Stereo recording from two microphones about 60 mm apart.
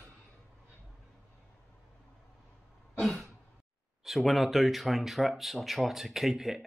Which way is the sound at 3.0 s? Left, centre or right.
Centre.